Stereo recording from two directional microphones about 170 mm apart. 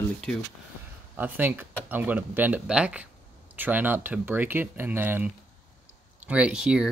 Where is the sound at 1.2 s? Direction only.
10° right (ahead or behind).